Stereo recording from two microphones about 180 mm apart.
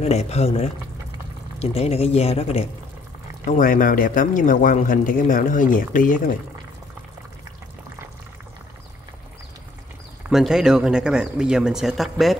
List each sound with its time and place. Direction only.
0.0 s speech: 35° left (ahead or behind)
3.4 s a man's voice: 45° left (ahead or behind)
10.3 s speech: 5° right (ahead or behind)